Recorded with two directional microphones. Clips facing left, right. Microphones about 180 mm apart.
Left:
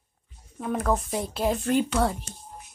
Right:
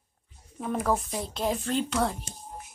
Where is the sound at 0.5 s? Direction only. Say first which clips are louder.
Left 2 dB; 5° right (ahead or behind).